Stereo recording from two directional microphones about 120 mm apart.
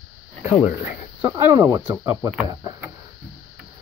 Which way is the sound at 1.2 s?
20° right (ahead or behind).